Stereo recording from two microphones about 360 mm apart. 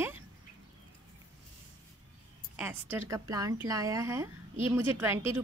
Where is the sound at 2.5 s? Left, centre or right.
Centre.